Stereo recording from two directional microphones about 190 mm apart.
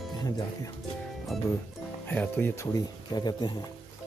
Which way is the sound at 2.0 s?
10° left (ahead or behind).